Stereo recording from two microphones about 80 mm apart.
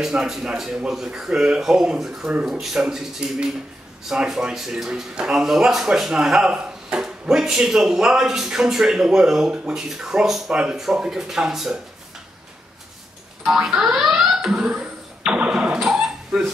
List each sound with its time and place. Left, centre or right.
0.0 s speech: centre
13.7 s alarm clock: centre